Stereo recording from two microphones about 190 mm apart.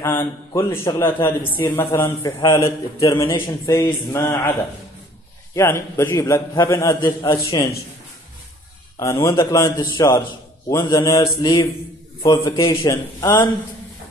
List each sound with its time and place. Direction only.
0.0 s a man's voice: 10° left (ahead or behind)
8.9 s a man's voice: 15° left (ahead or behind)
10.7 s mantra: 15° left (ahead or behind)
12.4 s a man's voice: 15° left (ahead or behind)